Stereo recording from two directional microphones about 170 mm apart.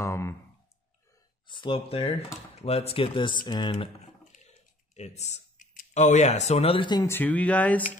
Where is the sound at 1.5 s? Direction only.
30° left (ahead or behind).